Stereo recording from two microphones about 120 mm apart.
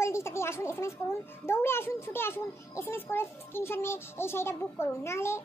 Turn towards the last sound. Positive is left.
turn(degrees=20)  # may be behind; listen again after turning